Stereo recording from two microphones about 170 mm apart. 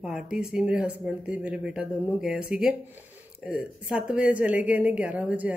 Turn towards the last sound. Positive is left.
turn(degrees=-5)  # may be behind; listen again after turning